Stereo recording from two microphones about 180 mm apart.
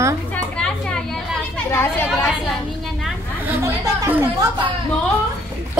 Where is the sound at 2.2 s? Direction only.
Centre (ahead or behind).